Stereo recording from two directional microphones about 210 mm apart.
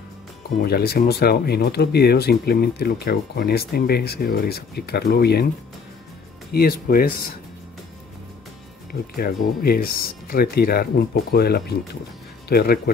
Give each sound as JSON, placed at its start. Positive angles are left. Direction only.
{"t": 0.6, "sound": "speech", "side_deg": 50}
{"t": 6.5, "sound": "speech", "side_deg": 45}
{"t": 9.1, "sound": "speech", "side_deg": 45}